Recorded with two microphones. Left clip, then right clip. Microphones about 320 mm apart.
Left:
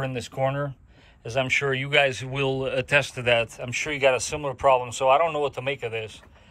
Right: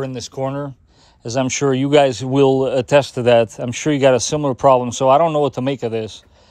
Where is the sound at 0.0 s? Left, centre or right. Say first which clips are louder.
Right 3 dB; centre.